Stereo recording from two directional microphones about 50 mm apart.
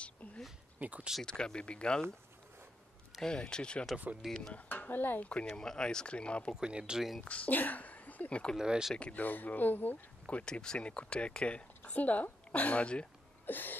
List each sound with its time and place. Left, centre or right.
0.0 s a sound: left
0.7 s speech: right
1.2 s speech: centre
3.2 s speech: centre
4.2 s speech: centre
4.6 s speech: left
5.2 s speech: left
5.5 s speech: centre
6.5 s speech: centre
7.2 s speech: left
8.5 s speech: centre
9.1 s speech: left
10.4 s speech: centre
13.5 s speech: left